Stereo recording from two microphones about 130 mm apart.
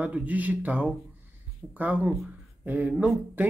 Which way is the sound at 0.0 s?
10° right (ahead or behind).